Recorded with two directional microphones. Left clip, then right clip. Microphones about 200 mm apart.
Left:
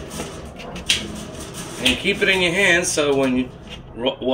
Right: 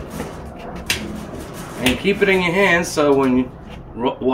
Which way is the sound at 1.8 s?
50° right (ahead or behind).